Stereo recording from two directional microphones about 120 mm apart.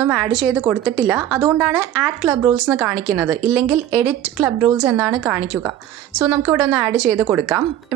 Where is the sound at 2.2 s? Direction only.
20° right (ahead or behind).